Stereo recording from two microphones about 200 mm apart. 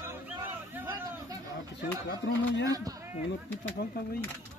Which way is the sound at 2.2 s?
65° left (ahead or behind).